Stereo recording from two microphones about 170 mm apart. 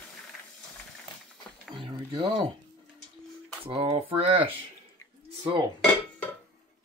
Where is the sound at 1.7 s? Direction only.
25° right (ahead or behind).